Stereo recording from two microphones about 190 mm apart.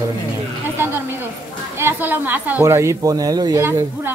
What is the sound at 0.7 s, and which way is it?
A woman's voice, 10° right (ahead or behind).